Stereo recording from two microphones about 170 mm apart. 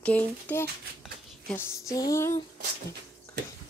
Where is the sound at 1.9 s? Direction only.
20° left (ahead or behind).